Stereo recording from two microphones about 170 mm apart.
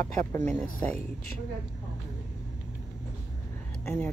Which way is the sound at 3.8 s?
10° left (ahead or behind).